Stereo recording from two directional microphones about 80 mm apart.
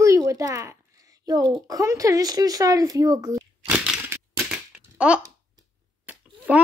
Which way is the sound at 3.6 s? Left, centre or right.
Centre.